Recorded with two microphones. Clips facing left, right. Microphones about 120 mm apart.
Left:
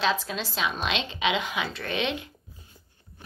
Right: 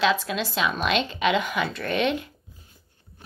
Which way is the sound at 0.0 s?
65° right (ahead or behind).